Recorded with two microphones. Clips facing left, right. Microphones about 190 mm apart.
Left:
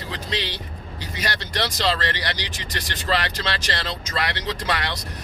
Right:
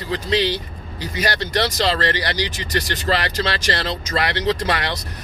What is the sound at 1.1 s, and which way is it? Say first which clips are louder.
Speech: right 6 dB; 45° right (ahead or behind).